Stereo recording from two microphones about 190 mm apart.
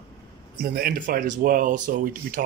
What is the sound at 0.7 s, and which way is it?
Speech, 55° right (ahead or behind).